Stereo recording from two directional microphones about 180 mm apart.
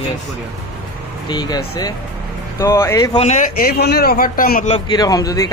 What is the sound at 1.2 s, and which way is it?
A man's voice, 25° left (ahead or behind).